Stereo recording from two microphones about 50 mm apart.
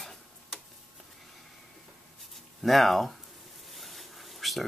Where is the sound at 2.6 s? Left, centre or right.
Centre.